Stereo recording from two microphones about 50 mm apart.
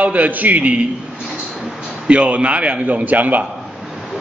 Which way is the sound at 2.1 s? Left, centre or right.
Right.